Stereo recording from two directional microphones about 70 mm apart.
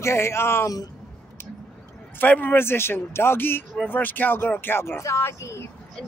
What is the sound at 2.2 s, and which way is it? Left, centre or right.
A man's voice, left.